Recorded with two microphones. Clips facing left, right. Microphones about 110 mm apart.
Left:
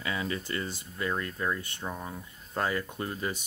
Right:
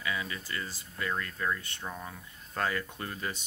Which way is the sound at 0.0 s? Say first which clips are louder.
Left 3 dB; 35° left (ahead or behind).